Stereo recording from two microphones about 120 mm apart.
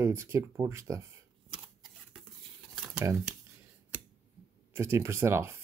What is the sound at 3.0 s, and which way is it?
Speech, 20° right (ahead or behind).